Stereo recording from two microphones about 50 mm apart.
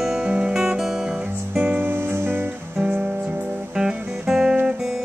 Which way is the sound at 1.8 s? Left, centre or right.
Right.